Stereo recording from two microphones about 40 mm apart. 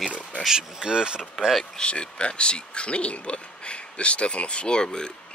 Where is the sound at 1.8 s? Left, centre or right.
Left.